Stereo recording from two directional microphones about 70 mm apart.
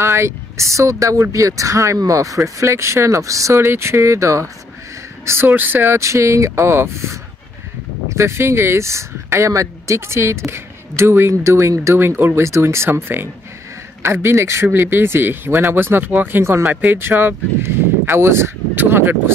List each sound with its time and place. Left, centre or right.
0.0 s speech: right
5.9 s speech: right